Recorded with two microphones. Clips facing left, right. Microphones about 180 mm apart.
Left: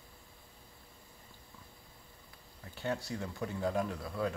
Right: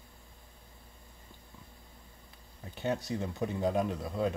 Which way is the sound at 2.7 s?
20° right (ahead or behind).